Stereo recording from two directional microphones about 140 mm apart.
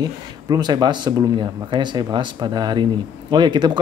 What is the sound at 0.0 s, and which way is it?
Speech, 30° right (ahead or behind).